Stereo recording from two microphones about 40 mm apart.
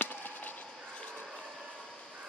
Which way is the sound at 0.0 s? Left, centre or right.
Left.